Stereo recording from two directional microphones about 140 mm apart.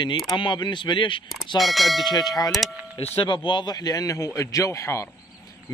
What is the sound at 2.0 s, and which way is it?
Speech, 30° left (ahead or behind).